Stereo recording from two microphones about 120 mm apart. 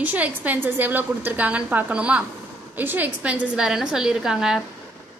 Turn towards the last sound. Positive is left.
turn(degrees=-5)  # may be behind; listen again after turning